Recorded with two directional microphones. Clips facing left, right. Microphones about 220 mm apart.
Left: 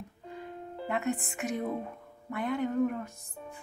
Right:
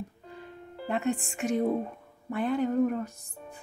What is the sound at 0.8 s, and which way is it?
A woman's voice, 30° right (ahead or behind).